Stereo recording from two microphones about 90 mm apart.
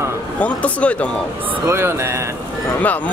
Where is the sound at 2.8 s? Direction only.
15° left (ahead or behind).